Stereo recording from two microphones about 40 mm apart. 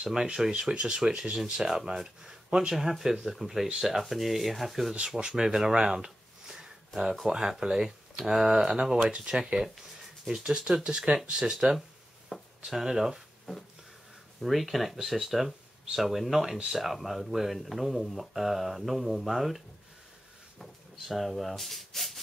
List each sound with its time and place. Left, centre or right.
0.0 s speech: centre
12.3 s a sound: centre
12.6 s speech: centre
14.4 s speech: centre